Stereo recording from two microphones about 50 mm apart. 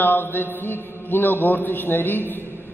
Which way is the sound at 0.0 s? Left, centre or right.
Left.